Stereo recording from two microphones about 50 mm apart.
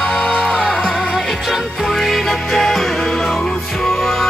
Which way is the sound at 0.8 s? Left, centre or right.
Centre.